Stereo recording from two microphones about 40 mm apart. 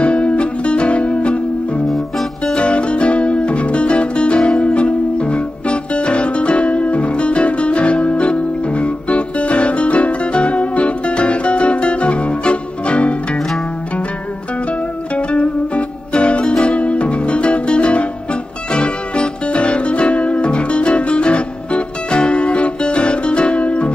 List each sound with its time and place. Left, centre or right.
0.0 s music: left
1.9 s music: centre
2.5 s music: left
15.1 s music: left